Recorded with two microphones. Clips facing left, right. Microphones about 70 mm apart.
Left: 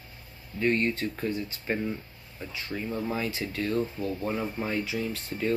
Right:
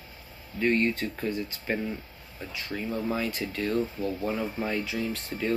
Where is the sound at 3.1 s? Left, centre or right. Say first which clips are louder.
Right 1 dB; centre.